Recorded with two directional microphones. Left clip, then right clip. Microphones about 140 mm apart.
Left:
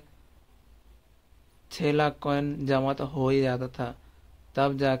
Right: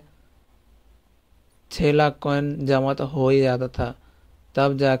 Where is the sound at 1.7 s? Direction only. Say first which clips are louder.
Right 6 dB; 35° right (ahead or behind).